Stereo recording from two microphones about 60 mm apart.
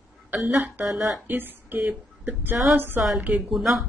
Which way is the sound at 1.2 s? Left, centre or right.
Right.